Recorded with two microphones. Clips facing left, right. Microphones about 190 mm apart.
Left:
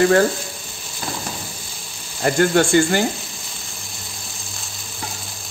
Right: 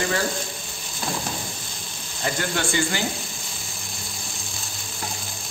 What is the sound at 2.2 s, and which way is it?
Speech, 50° left (ahead or behind).